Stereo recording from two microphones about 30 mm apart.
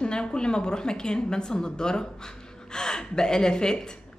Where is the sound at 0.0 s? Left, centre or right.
Left.